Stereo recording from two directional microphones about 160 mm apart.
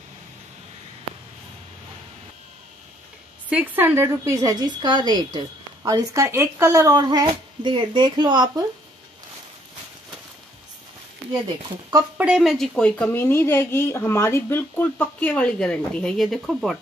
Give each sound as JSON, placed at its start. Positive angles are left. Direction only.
{"t": 3.4, "sound": "speech", "side_deg": -10}
{"t": 12.2, "sound": "speech", "side_deg": -5}